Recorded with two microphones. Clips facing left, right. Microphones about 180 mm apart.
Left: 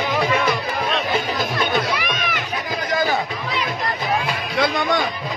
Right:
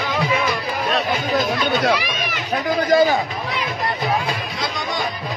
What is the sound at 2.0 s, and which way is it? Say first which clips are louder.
Run: left 1 dB; 55° left (ahead or behind).